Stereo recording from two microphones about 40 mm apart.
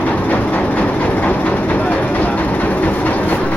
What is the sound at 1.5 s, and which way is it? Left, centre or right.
Vehicle, left.